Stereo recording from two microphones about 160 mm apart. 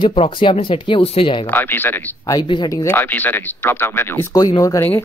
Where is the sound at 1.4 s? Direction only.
10° left (ahead or behind).